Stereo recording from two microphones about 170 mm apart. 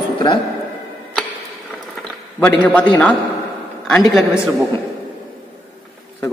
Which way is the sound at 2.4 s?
10° left (ahead or behind).